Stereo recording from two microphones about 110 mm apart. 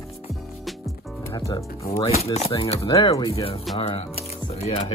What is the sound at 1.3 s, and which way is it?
Speech, 30° left (ahead or behind).